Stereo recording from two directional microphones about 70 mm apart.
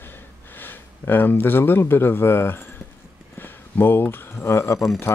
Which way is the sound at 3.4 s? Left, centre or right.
Left.